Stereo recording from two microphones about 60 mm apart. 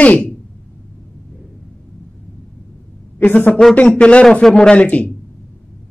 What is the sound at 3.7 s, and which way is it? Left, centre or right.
A man's voice, centre.